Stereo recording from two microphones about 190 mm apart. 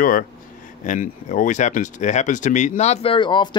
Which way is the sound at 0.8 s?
40° left (ahead or behind).